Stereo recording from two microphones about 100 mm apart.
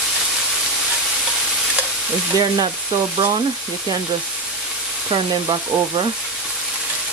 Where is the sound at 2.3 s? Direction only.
35° right (ahead or behind).